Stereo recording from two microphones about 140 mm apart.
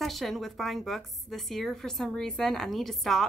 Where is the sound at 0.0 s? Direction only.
Centre (ahead or behind).